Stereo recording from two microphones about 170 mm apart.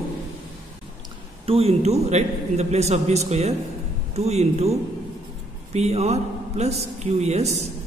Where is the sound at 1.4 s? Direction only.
35° right (ahead or behind).